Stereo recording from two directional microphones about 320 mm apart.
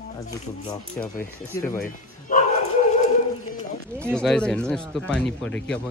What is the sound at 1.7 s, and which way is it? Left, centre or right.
Speech, left.